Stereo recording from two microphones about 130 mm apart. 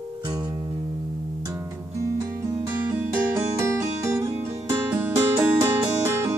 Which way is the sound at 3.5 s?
20° right (ahead or behind).